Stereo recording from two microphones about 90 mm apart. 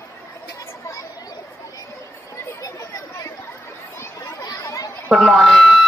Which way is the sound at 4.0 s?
35° left (ahead or behind).